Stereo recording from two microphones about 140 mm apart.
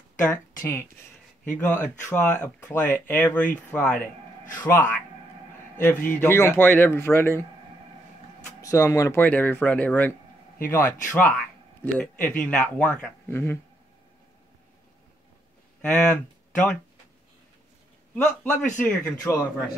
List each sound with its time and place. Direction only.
0.6 s speech: 20° left (ahead or behind)
8.5 s speech: 25° left (ahead or behind)
15.8 s speech: 5° left (ahead or behind)
18.1 s speech: 10° left (ahead or behind)